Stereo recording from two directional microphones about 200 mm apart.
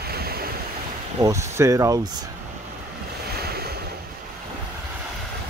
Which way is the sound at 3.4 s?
50° right (ahead or behind).